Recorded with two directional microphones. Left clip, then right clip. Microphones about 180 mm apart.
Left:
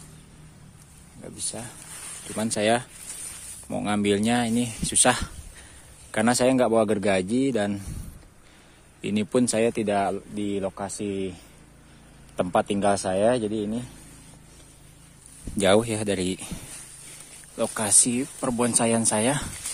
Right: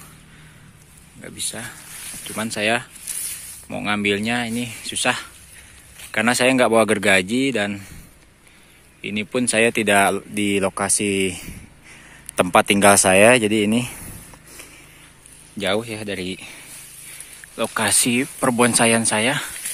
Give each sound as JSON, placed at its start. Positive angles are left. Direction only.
{"t": 1.2, "sound": "speech", "side_deg": -5}
{"t": 2.3, "sound": "speech", "side_deg": 15}
{"t": 6.1, "sound": "speech", "side_deg": 10}
{"t": 9.0, "sound": "speech", "side_deg": 25}
{"t": 9.4, "sound": "speech", "side_deg": 10}
{"t": 9.7, "sound": "speech", "side_deg": 0}
{"t": 9.9, "sound": "speech", "side_deg": -15}
{"t": 12.4, "sound": "speech", "side_deg": -15}
{"t": 13.2, "sound": "speech", "side_deg": -60}
{"t": 15.5, "sound": "speech", "side_deg": 30}
{"t": 17.7, "sound": "speech", "side_deg": 0}
{"t": 18.4, "sound": "speech", "side_deg": -10}
{"t": 18.7, "sound": "speech", "side_deg": 0}